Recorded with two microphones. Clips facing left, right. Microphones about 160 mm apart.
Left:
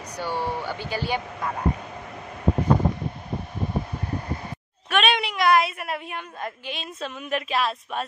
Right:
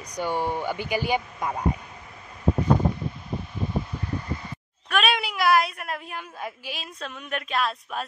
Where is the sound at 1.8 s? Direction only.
75° left (ahead or behind).